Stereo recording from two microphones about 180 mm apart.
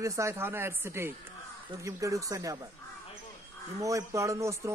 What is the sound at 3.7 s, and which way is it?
Speech, 20° right (ahead or behind).